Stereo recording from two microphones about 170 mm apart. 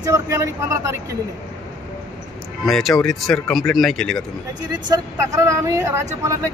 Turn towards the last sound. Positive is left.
turn(degrees=-15)  # may be behind; listen again after turning